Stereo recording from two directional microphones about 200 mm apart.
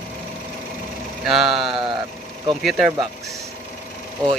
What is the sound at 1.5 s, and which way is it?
Speech, 25° right (ahead or behind).